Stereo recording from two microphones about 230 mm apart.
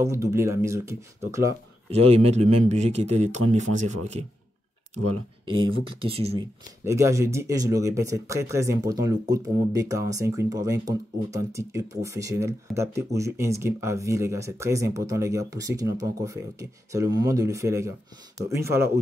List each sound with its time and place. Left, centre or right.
0.0 s speech: centre
1.9 s speech: right
5.4 s speech: right
6.8 s speech: centre